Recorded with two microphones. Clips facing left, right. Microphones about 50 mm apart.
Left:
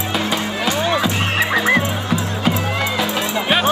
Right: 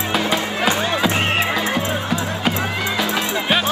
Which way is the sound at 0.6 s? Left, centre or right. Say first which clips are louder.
Right 1 dB; right.